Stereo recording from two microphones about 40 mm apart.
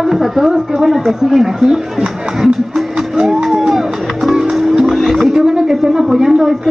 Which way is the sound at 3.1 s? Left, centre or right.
Centre.